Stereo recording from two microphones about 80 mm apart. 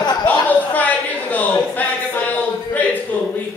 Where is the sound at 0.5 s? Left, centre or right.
Centre.